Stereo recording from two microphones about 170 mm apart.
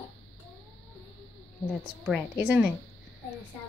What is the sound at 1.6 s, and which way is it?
A woman's voice, 5° right (ahead or behind).